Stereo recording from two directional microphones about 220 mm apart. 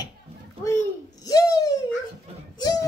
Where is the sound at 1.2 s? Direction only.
15° left (ahead or behind).